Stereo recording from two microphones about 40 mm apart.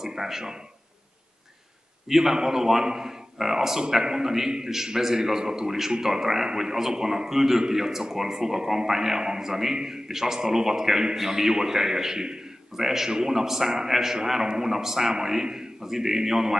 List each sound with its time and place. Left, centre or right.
0.0 s a man's voice: centre
2.0 s a man's voice: centre